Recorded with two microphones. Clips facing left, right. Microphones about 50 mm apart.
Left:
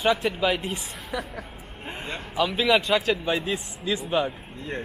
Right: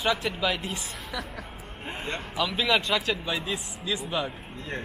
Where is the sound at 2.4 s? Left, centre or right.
Left.